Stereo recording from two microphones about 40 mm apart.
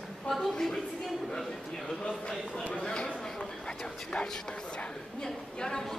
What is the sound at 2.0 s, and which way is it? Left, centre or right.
Speech, centre.